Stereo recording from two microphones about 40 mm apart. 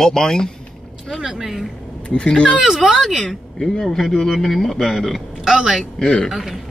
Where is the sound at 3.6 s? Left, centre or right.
Centre.